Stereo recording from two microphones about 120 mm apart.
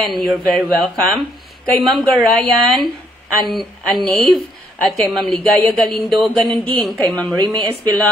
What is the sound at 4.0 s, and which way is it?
A woman's voice, centre (ahead or behind).